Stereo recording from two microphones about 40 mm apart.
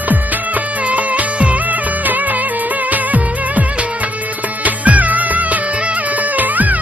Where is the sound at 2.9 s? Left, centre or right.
Right.